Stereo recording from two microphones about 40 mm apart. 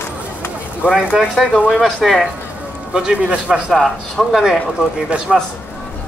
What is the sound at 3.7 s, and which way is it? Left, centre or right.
Speech, centre.